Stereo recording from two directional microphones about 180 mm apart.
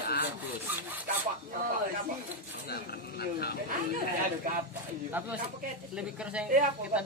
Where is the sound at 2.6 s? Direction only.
60° left (ahead or behind).